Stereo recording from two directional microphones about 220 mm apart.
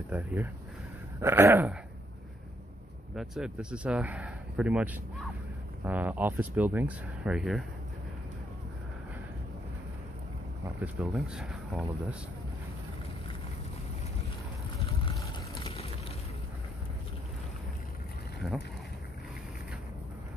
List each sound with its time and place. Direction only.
0.1 s speech: 5° right (ahead or behind)
3.2 s speech: centre (ahead or behind)
10.8 s speech: 5° right (ahead or behind)
15.6 s boat: 25° left (ahead or behind)